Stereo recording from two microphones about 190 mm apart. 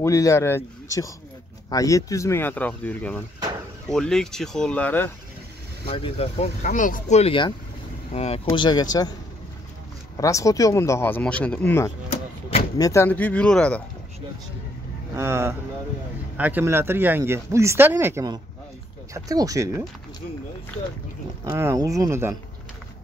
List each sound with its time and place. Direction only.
0.0 s speech: 15° left (ahead or behind)
5.9 s speech: 30° left (ahead or behind)
6.6 s speech: 40° left (ahead or behind)
8.5 s speech: 20° left (ahead or behind)
10.1 s speech: 15° left (ahead or behind)
12.4 s door: 30° left (ahead or behind)
12.8 s speech: 15° left (ahead or behind)
15.1 s speech: 15° right (ahead or behind)
21.5 s speech: 15° right (ahead or behind)